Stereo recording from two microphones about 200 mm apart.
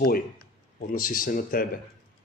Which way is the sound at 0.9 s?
45° left (ahead or behind).